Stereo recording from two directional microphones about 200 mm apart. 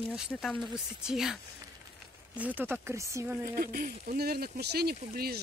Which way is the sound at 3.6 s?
45° right (ahead or behind).